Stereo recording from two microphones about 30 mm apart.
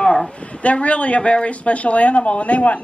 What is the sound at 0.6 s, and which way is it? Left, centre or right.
A woman's voice, left.